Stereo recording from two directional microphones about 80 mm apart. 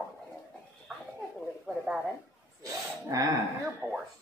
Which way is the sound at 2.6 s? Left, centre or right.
Right.